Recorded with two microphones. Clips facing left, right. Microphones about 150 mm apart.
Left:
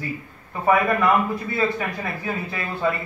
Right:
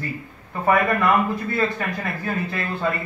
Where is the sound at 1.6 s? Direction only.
10° left (ahead or behind).